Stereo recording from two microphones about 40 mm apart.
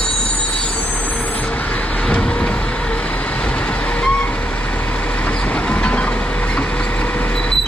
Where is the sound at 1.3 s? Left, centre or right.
Left.